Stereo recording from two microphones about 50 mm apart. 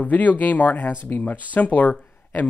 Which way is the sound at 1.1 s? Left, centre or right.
Left.